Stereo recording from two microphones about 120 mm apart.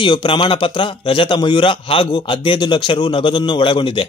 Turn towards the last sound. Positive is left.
turn(degrees=45)  # may be behind; listen again after turning